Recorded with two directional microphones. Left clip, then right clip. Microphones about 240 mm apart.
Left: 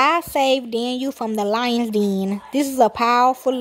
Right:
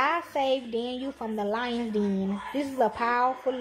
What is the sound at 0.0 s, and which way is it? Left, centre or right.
A woman's voice, left.